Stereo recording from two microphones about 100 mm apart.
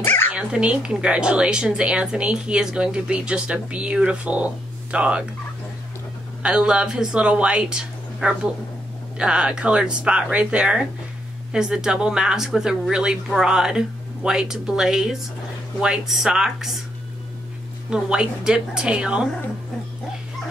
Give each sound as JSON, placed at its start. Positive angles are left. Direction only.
{"t": 0.0, "sound": "dog", "side_deg": 20}
{"t": 0.3, "sound": "speech", "side_deg": -10}
{"t": 6.4, "sound": "speech", "side_deg": -10}
{"t": 17.8, "sound": "speech", "side_deg": -10}